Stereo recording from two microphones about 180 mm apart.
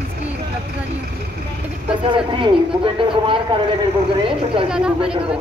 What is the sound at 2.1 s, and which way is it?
Speech, 30° right (ahead or behind).